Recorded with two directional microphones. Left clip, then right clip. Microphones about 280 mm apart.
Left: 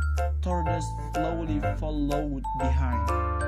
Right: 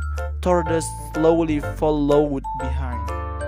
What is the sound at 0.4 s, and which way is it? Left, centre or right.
Speech, right.